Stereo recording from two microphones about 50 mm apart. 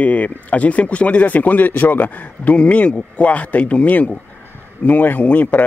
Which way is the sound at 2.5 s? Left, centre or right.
Left.